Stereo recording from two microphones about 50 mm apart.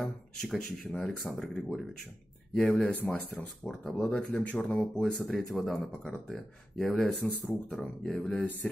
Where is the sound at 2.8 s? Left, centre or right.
Left.